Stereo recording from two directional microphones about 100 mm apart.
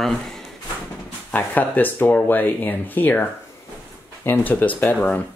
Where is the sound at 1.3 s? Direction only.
15° left (ahead or behind).